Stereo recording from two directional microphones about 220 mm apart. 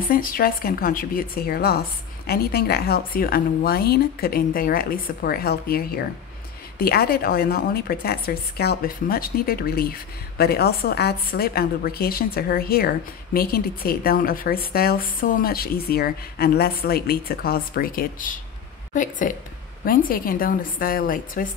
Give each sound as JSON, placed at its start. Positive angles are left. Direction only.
{"t": 0.1, "sound": "a woman's voice", "side_deg": 40}